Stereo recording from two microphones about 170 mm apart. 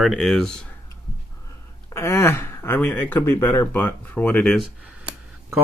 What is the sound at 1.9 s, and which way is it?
Speech, 15° left (ahead or behind).